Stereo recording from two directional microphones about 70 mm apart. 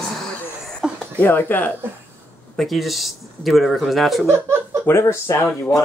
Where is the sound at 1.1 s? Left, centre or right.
Left.